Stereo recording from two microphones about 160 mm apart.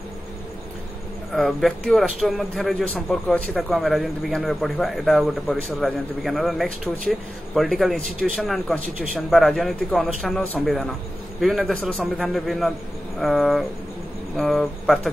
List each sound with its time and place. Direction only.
1.3 s speech: centre (ahead or behind)